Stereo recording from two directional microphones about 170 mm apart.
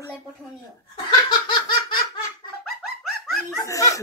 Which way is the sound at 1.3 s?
25° left (ahead or behind).